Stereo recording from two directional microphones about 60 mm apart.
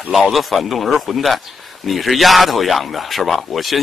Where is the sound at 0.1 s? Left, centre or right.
Centre.